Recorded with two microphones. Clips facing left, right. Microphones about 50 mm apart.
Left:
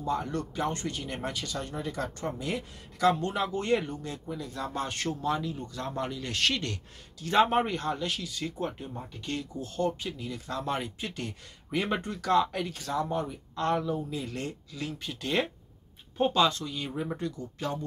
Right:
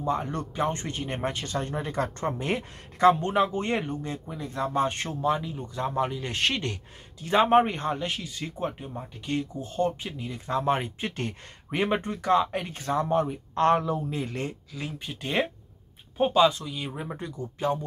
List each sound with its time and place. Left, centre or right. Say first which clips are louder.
0.0 s speech: right 2 dB; right
14.2 s speech: right 3 dB; right